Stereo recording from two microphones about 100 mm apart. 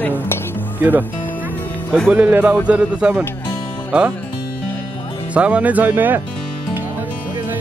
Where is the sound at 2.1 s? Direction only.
15° right (ahead or behind).